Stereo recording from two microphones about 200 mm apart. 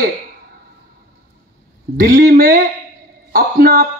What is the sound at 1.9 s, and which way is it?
A man's voice, 45° right (ahead or behind).